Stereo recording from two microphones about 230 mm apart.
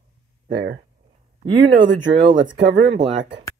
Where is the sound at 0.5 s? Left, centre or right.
Right.